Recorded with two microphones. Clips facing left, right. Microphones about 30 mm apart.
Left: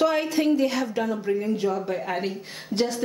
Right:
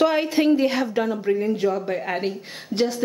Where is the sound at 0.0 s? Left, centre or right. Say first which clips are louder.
Right 3 dB; right.